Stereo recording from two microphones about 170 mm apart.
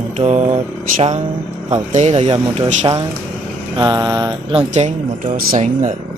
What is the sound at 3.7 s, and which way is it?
Mantra, 25° right (ahead or behind).